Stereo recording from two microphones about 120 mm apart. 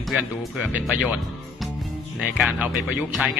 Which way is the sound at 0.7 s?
15° right (ahead or behind).